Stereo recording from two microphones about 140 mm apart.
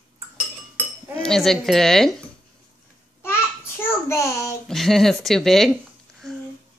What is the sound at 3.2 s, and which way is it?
Child singing, 15° left (ahead or behind).